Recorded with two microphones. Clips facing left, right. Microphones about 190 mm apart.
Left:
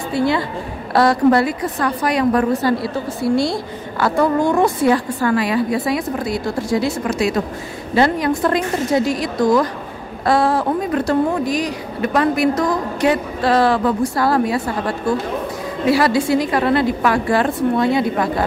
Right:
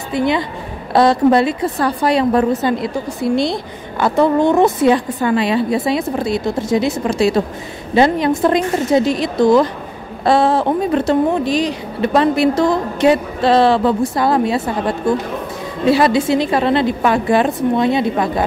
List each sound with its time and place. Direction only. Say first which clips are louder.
0.1 s a woman's voice: right 1 dB; 20° right (ahead or behind)